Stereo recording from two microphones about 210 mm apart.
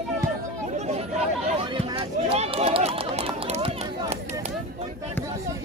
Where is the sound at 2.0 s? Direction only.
30° right (ahead or behind).